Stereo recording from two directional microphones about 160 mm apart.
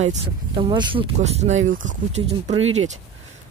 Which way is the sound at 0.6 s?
30° right (ahead or behind).